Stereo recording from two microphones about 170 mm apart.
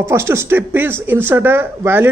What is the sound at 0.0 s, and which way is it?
A man's voice, 15° right (ahead or behind).